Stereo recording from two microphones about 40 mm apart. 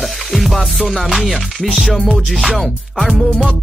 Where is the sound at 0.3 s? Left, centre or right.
Centre.